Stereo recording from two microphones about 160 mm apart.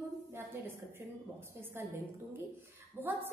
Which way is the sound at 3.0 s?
10° left (ahead or behind).